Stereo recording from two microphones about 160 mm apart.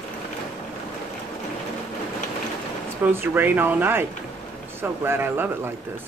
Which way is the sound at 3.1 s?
15° right (ahead or behind).